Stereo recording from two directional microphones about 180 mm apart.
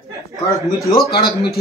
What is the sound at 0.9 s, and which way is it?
Speech, 20° left (ahead or behind).